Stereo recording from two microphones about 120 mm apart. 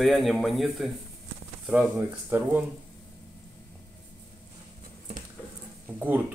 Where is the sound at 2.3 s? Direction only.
15° right (ahead or behind).